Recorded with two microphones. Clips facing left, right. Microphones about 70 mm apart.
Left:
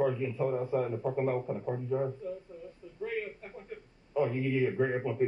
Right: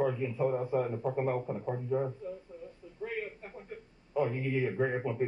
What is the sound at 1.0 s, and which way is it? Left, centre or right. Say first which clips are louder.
A man's voice: left 1 dB; centre.